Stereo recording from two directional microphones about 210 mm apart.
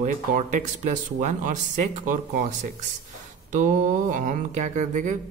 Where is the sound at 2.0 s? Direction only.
40° right (ahead or behind).